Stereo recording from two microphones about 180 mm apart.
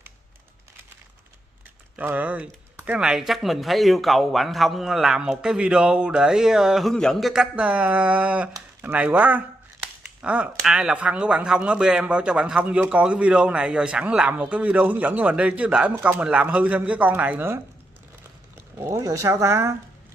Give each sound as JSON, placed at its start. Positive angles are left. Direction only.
{"t": 2.0, "sound": "speech", "side_deg": -10}
{"t": 18.8, "sound": "speech", "side_deg": -15}